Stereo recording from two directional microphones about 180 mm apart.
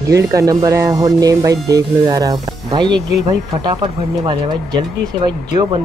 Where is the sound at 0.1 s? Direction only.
15° right (ahead or behind).